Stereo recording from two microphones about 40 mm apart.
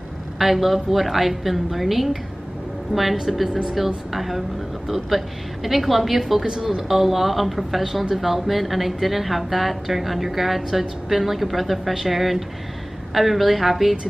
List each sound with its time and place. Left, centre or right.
0.4 s speech: centre
6.4 s speech: centre
6.9 s speech: centre